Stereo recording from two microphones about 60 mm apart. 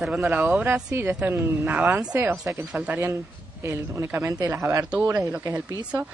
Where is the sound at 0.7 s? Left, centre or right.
Right.